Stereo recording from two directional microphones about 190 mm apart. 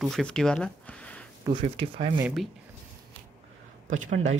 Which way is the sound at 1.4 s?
25° right (ahead or behind).